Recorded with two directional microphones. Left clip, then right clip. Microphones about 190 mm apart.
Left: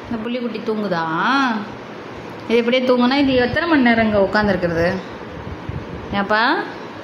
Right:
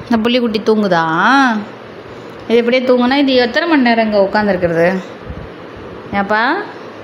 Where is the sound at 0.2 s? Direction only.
45° right (ahead or behind).